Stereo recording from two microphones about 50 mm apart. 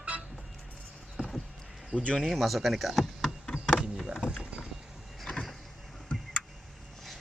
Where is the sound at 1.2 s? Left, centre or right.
Centre.